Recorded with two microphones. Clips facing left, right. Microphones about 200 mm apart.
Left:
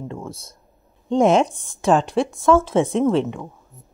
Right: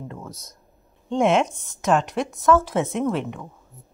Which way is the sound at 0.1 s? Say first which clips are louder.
Left 5 dB; 30° left (ahead or behind).